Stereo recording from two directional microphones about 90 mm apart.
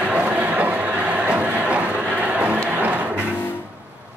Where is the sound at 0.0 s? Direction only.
15° right (ahead or behind).